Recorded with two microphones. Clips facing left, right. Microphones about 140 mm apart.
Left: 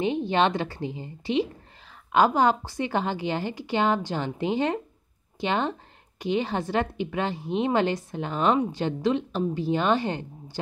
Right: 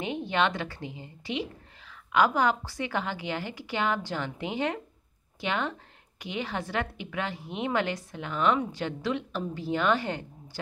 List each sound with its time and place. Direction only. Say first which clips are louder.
0.0 s a woman's voice: left 5 dB; 30° left (ahead or behind)